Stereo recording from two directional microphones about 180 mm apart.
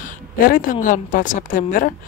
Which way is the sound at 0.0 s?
50° left (ahead or behind).